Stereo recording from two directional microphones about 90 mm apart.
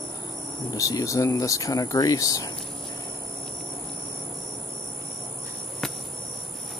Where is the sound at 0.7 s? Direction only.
40° left (ahead or behind).